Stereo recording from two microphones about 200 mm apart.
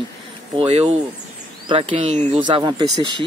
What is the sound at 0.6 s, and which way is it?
Speech, 30° right (ahead or behind).